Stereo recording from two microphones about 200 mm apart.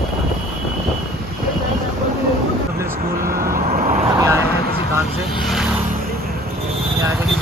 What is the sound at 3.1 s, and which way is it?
Vehicle, 45° right (ahead or behind).